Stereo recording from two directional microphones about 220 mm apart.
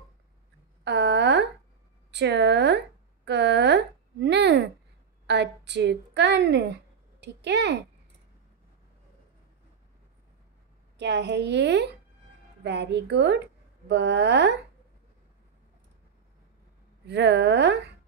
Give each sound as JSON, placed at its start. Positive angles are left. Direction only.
{"t": 0.8, "sound": "a sound", "side_deg": -50}
{"t": 2.0, "sound": "a woman's voice", "side_deg": -50}
{"t": 3.3, "sound": "a sound", "side_deg": -50}
{"t": 5.2, "sound": "a woman's voice", "side_deg": -50}
{"t": 11.0, "sound": "a woman's voice", "side_deg": -50}
{"t": 17.0, "sound": "a woman's voice", "side_deg": -50}